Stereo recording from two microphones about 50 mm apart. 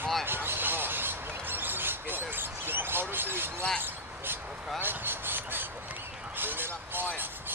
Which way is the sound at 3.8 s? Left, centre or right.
Right.